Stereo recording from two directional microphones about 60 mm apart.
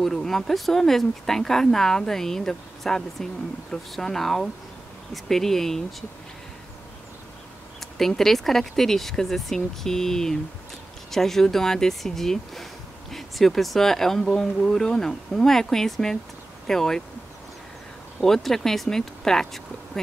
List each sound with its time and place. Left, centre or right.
0.0 s speech: centre
7.8 s speech: centre
18.2 s speech: centre